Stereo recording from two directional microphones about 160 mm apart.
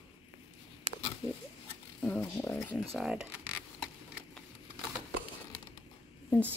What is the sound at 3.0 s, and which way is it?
Speech, 5° right (ahead or behind).